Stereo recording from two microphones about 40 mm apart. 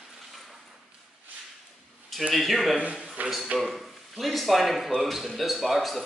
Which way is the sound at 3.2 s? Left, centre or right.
Right.